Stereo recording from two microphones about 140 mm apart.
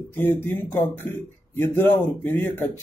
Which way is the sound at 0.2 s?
15° left (ahead or behind).